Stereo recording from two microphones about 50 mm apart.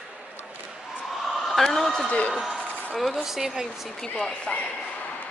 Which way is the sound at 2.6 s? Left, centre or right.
Left.